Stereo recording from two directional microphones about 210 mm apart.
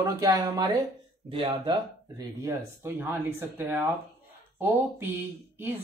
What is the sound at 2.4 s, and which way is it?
Speech, 10° right (ahead or behind).